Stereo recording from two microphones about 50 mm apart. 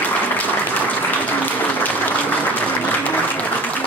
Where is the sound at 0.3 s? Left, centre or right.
Left.